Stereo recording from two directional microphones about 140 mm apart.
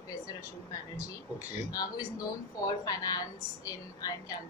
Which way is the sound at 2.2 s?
25° left (ahead or behind).